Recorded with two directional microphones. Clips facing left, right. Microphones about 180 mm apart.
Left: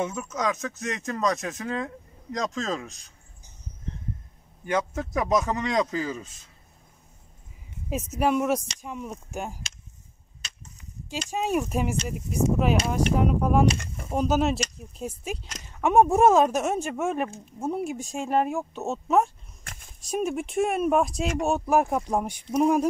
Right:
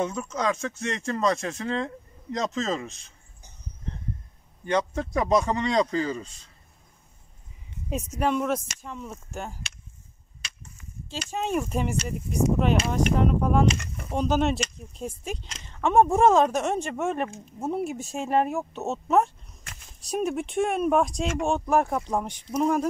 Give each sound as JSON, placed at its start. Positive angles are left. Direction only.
{"t": 0.0, "sound": "speech", "side_deg": 5}
{"t": 3.9, "sound": "a sound", "side_deg": -60}
{"t": 4.6, "sound": "speech", "side_deg": 5}
{"t": 7.9, "sound": "speech", "side_deg": 5}
{"t": 11.2, "sound": "speech", "side_deg": 10}